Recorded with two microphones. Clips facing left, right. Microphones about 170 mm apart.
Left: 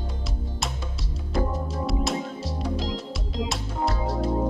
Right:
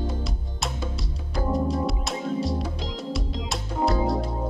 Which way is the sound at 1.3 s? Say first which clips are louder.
Right 3 dB; centre (ahead or behind).